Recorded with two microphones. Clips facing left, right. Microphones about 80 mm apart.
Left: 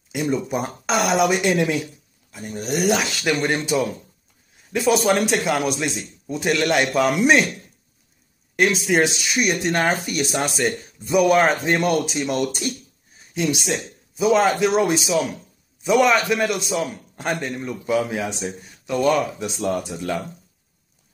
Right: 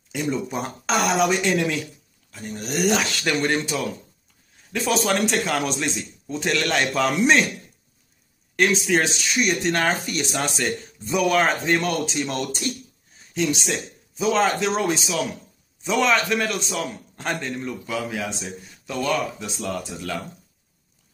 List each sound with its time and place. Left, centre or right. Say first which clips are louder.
0.1 s speech: left 3 dB; centre
1.4 s a man's voice: left 2 dB; centre
2.7 s speech: left 1 dB; centre
3.6 s a man's voice: left 5 dB; centre
8.8 s a man's voice: left 2 dB; centre